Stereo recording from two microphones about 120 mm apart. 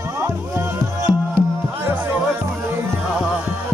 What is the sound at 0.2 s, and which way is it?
Music, 20° right (ahead or behind).